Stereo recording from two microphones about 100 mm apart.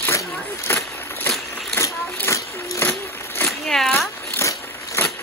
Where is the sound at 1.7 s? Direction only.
25° left (ahead or behind).